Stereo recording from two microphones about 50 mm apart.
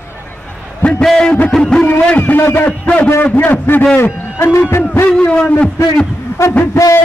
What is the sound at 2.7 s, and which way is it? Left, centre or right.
Speech, left.